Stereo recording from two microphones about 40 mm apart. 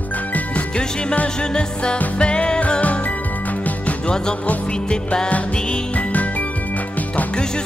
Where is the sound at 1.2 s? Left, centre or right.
Left.